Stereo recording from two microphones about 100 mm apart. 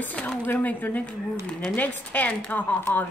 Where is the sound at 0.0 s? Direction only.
15° left (ahead or behind).